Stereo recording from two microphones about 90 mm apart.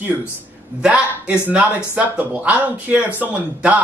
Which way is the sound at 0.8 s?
10° right (ahead or behind).